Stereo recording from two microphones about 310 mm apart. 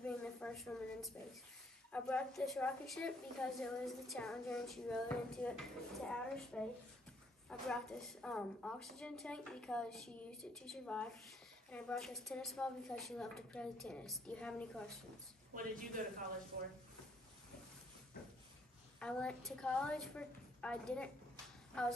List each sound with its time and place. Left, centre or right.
0.0 s a sound: centre
1.9 s a woman's voice: centre
15.5 s speech: right
18.9 s a woman's voice: centre